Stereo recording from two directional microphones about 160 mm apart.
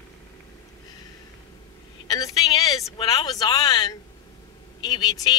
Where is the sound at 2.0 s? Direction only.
25° left (ahead or behind).